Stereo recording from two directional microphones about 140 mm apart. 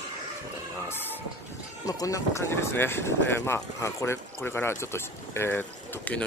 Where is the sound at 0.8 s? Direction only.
15° left (ahead or behind).